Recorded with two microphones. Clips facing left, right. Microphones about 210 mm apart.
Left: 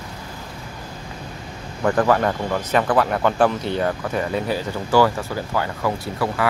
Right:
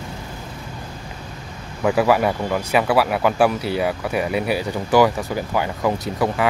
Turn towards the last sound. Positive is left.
turn(degrees=-20)  # may be behind; listen again after turning